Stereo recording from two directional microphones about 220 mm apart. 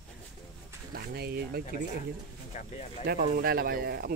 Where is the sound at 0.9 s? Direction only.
45° right (ahead or behind).